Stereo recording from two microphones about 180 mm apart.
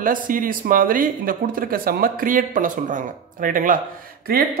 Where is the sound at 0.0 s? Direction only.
50° right (ahead or behind).